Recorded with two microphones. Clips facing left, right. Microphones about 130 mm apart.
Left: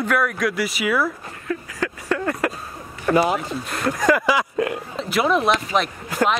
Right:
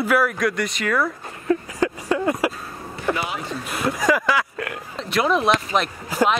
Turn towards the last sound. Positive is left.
turn(degrees=0)  # may be behind; listen again after turning